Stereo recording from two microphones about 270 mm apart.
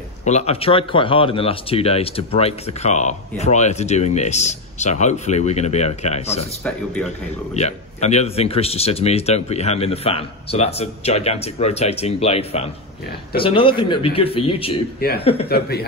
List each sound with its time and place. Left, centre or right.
0.2 s speech: left
6.6 s speech: centre
7.5 s speech: left
15.0 s speech: left